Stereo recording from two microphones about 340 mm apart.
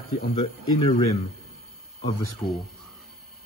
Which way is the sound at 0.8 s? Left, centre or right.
Centre.